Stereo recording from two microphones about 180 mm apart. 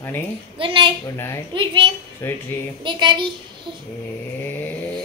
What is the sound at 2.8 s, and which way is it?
Speech, 25° right (ahead or behind).